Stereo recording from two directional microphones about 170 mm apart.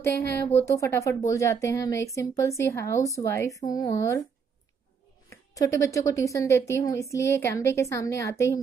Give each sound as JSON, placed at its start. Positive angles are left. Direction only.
{"t": 0.0, "sound": "a woman's voice", "side_deg": 15}
{"t": 5.3, "sound": "a woman's voice", "side_deg": 20}